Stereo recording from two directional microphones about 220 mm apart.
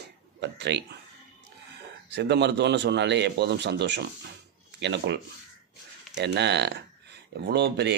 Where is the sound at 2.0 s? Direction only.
50° right (ahead or behind).